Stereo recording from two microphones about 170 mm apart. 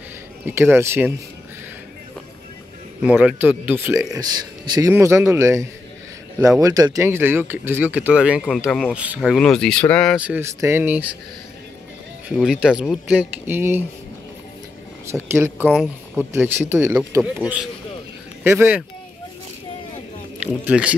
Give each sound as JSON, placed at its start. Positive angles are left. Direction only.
{"t": 0.5, "sound": "speech", "side_deg": -15}
{"t": 3.0, "sound": "speech", "side_deg": -10}
{"t": 10.1, "sound": "speech", "side_deg": -10}
{"t": 12.3, "sound": "speech", "side_deg": -5}
{"t": 15.0, "sound": "speech", "side_deg": -15}
{"t": 17.2, "sound": "speech", "side_deg": -5}
{"t": 20.3, "sound": "speech", "side_deg": -5}